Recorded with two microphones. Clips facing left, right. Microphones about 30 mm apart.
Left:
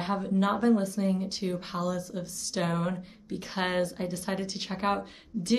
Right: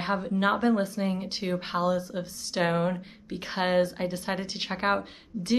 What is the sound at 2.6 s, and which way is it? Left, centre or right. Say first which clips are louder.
Speech: right 4 dB; centre.